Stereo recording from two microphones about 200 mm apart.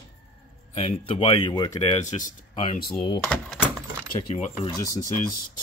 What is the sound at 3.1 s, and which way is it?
Speech, 10° left (ahead or behind).